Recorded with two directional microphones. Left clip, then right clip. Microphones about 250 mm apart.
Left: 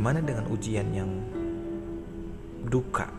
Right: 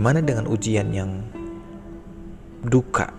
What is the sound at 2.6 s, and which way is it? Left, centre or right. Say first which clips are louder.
Speech: right 8 dB; right.